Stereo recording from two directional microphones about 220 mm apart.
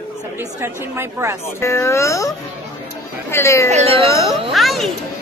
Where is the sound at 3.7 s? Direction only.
25° right (ahead or behind).